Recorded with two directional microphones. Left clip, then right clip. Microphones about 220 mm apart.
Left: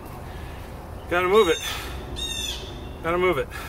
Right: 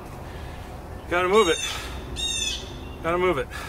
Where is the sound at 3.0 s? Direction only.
5° right (ahead or behind).